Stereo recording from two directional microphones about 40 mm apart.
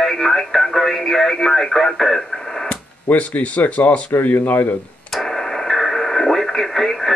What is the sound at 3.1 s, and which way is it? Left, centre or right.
Speech, left.